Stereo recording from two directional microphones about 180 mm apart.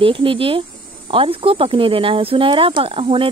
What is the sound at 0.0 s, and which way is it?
Speech, 30° right (ahead or behind).